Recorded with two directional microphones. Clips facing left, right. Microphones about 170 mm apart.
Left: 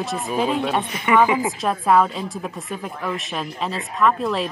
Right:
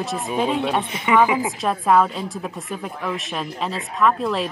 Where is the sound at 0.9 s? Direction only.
20° right (ahead or behind).